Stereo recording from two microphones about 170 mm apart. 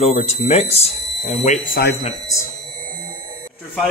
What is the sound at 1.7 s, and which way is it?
Speech, 70° left (ahead or behind).